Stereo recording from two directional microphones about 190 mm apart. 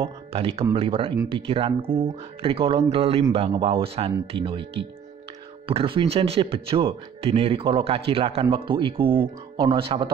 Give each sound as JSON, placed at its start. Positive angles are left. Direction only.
{"t": 0.0, "sound": "speech", "side_deg": -30}
{"t": 5.7, "sound": "speech", "side_deg": -30}